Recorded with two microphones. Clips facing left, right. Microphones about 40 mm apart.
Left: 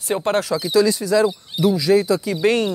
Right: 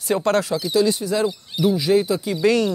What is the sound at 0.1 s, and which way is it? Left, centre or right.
Speech, left.